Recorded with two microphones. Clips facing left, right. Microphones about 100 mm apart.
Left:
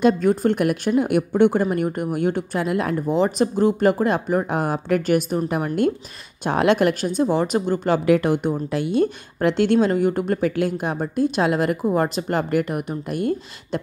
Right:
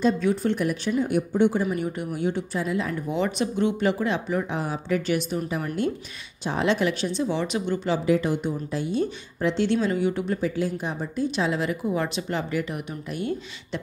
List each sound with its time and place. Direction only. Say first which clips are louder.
0.0 s a woman's voice: left 5 dB; 50° left (ahead or behind)
3.1 s speech: left 7 dB; 35° left (ahead or behind)
7.9 s a woman's voice: left 5 dB; 65° left (ahead or behind); by 13.7 s 45° left (ahead or behind)